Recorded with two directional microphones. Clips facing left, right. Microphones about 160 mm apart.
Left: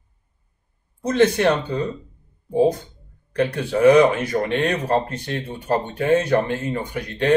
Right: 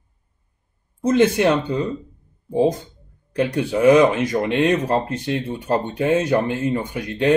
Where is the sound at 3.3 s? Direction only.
20° right (ahead or behind).